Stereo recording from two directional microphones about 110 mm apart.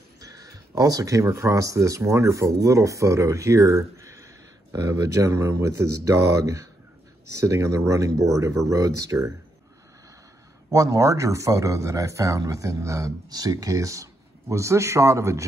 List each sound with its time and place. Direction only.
0.2 s speech: 35° right (ahead or behind)
10.7 s speech: 30° right (ahead or behind)